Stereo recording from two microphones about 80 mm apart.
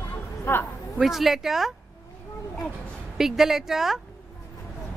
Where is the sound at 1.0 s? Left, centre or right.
Centre.